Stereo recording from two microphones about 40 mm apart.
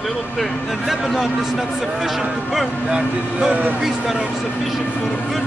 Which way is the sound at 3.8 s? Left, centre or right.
Centre.